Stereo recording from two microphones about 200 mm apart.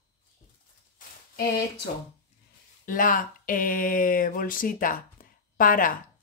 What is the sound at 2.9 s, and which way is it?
Speech, 45° left (ahead or behind).